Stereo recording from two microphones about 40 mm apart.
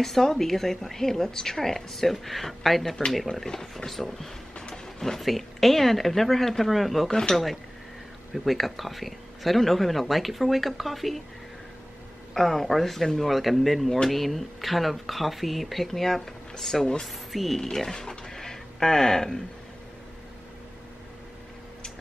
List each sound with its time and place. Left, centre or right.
0.0 s a woman's voice: centre
7.1 s a woman's voice: centre
8.5 s speech: centre
12.4 s a woman's voice: centre
17.6 s speech: centre